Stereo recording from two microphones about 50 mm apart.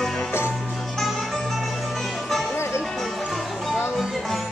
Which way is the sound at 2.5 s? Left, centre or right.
Left.